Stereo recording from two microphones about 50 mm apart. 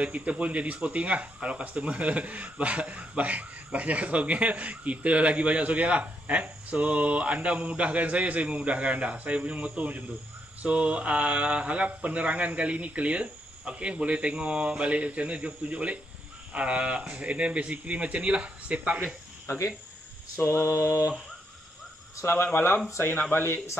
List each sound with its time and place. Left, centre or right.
0.0 s speech: right
19.5 s mantra: left
22.1 s speech: left